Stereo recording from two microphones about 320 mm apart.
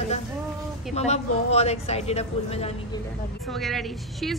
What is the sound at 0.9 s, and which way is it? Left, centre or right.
A woman's voice, centre.